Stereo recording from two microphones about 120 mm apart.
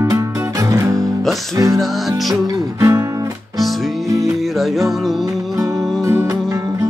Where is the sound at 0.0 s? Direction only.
25° right (ahead or behind).